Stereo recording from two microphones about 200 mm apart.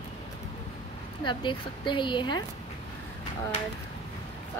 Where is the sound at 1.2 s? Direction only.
25° left (ahead or behind).